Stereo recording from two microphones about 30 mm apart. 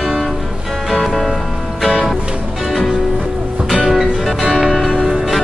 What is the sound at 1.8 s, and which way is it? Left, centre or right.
Music, centre.